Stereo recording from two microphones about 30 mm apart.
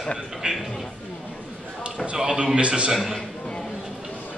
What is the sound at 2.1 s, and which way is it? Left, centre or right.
Speech, right.